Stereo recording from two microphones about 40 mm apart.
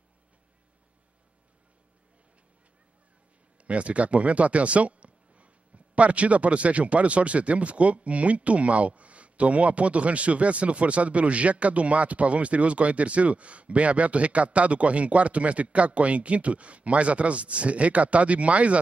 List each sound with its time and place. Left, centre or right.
3.6 s speech: right